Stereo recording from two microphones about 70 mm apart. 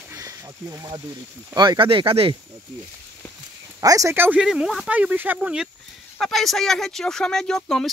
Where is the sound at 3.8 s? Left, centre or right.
Right.